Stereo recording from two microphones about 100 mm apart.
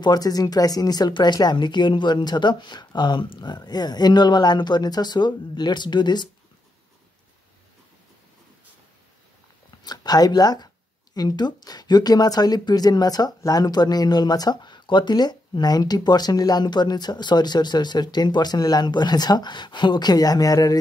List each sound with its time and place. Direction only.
0.0 s speech: 40° left (ahead or behind)
9.8 s speech: 40° left (ahead or behind)